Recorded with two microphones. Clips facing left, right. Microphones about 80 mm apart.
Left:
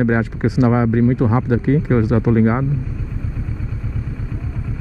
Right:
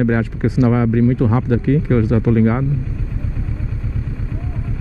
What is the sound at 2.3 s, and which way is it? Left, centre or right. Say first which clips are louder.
Speech: even; left.